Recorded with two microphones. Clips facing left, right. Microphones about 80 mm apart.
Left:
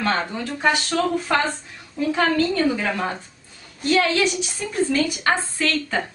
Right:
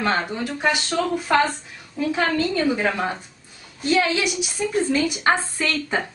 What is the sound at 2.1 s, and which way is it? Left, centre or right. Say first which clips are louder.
A woman's voice: left 2 dB; centre.